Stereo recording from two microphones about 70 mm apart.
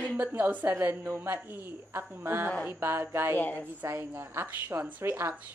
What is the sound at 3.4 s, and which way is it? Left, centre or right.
Speech, left.